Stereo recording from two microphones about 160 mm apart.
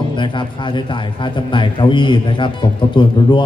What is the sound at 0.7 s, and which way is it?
A man's voice, 30° left (ahead or behind).